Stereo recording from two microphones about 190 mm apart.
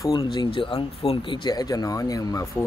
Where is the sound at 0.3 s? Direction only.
25° left (ahead or behind).